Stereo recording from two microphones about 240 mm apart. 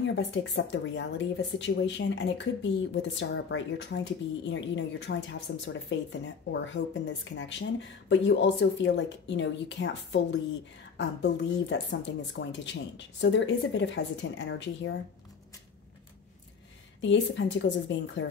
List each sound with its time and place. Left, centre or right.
0.0 s speech: left
17.0 s speech: left